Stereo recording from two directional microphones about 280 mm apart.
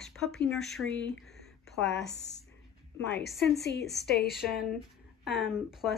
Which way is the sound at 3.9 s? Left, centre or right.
Left.